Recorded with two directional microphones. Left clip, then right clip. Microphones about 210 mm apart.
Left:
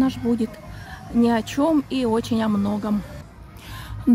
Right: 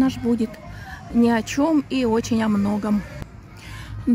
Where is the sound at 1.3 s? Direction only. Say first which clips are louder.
Even; 5° right (ahead or behind).